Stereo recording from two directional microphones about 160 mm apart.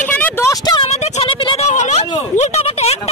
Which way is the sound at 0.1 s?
10° left (ahead or behind).